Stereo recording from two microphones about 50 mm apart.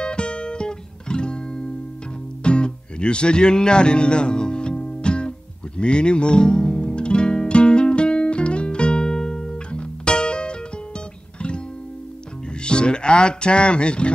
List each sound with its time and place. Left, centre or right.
0.0 s music: centre
12.6 s music: centre